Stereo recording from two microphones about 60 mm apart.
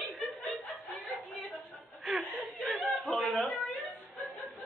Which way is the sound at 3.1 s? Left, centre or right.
Centre.